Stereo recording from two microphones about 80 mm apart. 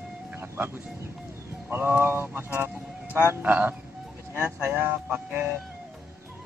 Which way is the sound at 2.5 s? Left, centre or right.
Right.